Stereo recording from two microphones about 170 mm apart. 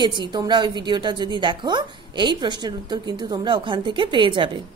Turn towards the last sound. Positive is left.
turn(degrees=-30)  # may be behind; listen again after turning